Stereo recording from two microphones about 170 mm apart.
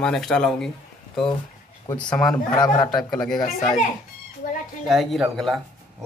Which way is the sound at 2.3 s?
25° left (ahead or behind).